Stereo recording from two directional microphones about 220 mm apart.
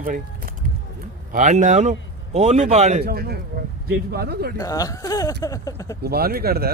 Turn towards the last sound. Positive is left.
turn(degrees=-45)  # may be behind; listen again after turning